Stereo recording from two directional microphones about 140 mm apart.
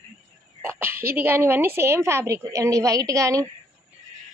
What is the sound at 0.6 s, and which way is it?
A woman's voice, 15° right (ahead or behind).